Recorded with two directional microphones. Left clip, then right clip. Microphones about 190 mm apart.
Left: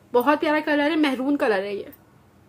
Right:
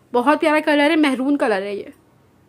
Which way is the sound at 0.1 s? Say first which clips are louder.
Right 4 dB; 30° right (ahead or behind).